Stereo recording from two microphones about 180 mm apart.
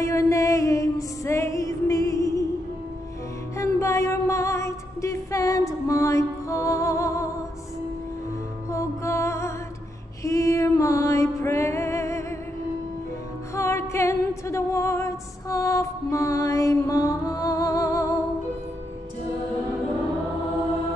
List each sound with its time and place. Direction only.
0.0 s music: 15° left (ahead or behind)
3.5 s music: 15° left (ahead or behind)
8.6 s music: 15° left (ahead or behind)
13.6 s music: 15° left (ahead or behind)